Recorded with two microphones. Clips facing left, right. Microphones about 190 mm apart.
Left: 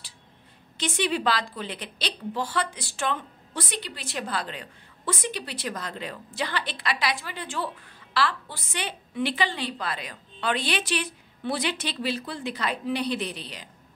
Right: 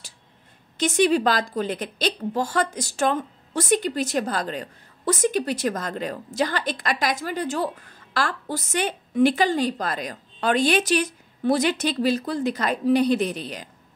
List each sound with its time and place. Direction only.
0.7 s a woman's voice: 45° right (ahead or behind)